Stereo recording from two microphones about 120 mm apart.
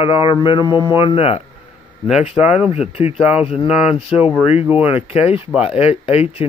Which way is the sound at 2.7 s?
60° left (ahead or behind).